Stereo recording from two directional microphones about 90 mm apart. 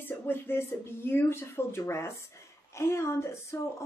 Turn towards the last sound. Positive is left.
turn(degrees=30)  # may be behind; listen again after turning